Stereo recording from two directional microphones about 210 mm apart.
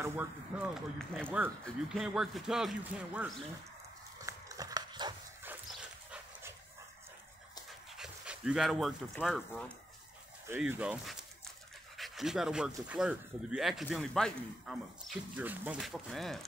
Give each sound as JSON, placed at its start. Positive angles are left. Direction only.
{"t": 0.0, "sound": "speech", "side_deg": -10}
{"t": 4.2, "sound": "horse", "side_deg": -15}
{"t": 7.9, "sound": "speech", "side_deg": -5}